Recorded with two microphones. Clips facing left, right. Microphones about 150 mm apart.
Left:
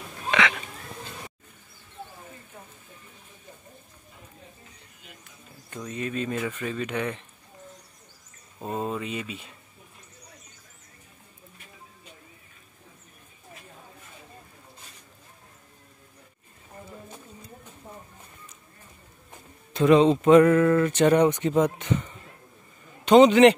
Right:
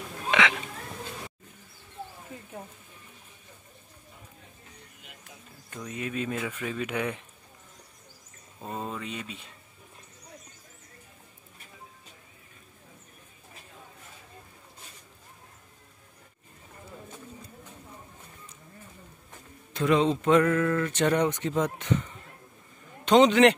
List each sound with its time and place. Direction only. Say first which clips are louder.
0.3 s speech: even; 15° right (ahead or behind)
5.7 s speech: left 3 dB; 5° right (ahead or behind)
8.7 s speech: left 5 dB; 10° left (ahead or behind)
19.7 s speech: left 6 dB; 25° left (ahead or behind); by 22.0 s 5° left (ahead or behind)
23.0 s a man's voice: left 4 dB; 5° left (ahead or behind)